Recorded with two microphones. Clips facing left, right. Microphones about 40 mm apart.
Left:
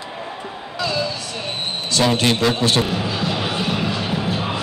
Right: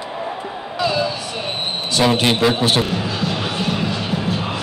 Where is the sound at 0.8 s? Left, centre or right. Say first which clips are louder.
Right 3 dB; centre.